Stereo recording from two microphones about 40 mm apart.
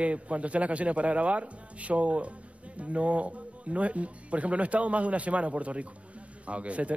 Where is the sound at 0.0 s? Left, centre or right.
Right.